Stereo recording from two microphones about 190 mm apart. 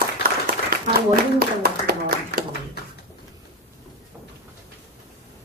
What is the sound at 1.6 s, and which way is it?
Clapping, 55° right (ahead or behind).